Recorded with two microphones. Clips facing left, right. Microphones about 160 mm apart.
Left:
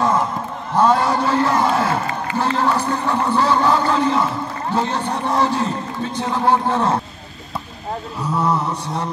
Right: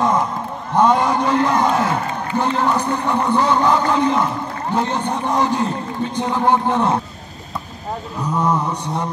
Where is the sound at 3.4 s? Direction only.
15° right (ahead or behind).